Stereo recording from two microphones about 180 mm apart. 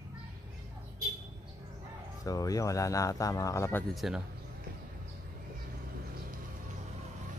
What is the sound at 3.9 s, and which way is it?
Speech, centre (ahead or behind).